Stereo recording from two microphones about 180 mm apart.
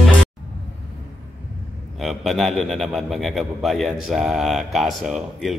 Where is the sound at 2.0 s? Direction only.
Centre (ahead or behind).